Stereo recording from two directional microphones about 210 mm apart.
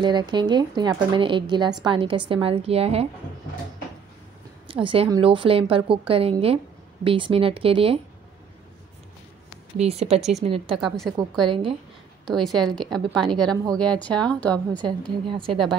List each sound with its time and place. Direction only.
0.0 s a woman's voice: 20° right (ahead or behind)
4.6 s a woman's voice: 25° right (ahead or behind)
9.8 s a woman's voice: 30° right (ahead or behind)
10.8 s a woman's voice: centre (ahead or behind)
11.4 s a woman's voice: 25° right (ahead or behind)
12.4 s a woman's voice: centre (ahead or behind)
15.2 s a woman's voice: 25° right (ahead or behind)